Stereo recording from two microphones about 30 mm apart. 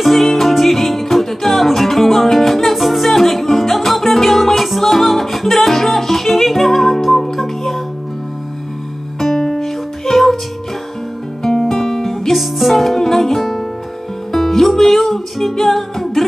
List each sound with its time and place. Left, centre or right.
0.0 s music: centre
9.2 s music: centre
11.7 s music: centre
12.3 s music: centre